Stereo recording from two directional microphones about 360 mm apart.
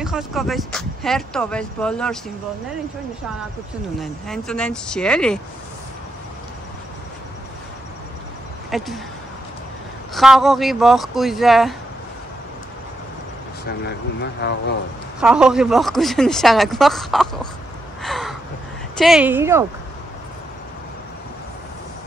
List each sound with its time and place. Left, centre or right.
0.0 s speech: centre
4.0 s speech: centre
8.6 s speech: centre
10.1 s speech: centre
13.7 s speech: left
15.1 s speech: centre
18.0 s a sound: centre
18.9 s speech: centre